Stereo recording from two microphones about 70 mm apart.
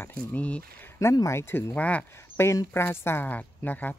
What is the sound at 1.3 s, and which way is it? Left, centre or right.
Speech, left.